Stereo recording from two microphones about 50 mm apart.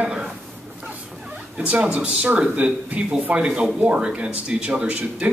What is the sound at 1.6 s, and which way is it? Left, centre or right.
A man's voice, right.